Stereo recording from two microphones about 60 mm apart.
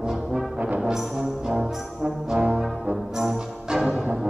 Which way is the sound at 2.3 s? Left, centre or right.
Centre.